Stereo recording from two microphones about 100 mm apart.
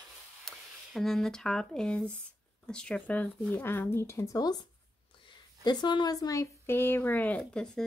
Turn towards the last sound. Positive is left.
turn(degrees=5)  # may be behind; listen again after turning